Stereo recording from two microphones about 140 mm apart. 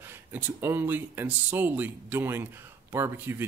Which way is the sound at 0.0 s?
15° right (ahead or behind).